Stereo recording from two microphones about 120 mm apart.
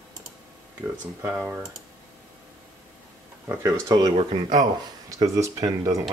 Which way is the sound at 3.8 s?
30° right (ahead or behind).